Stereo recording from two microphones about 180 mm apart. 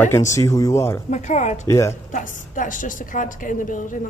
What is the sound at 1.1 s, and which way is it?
Speech, 40° left (ahead or behind).